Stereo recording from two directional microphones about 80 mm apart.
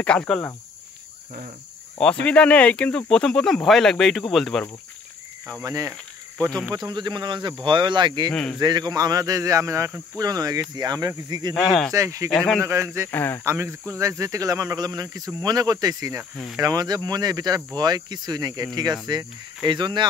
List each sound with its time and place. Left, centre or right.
0.0 s speech: centre
2.0 s speech: centre
5.6 s speech: right
6.9 s speech: right
8.3 s speech: centre
8.5 s speech: right
10.1 s speech: right
11.5 s speech: centre
11.9 s speech: right
12.3 s speech: centre
12.6 s speech: right
13.1 s speech: left
13.4 s speech: right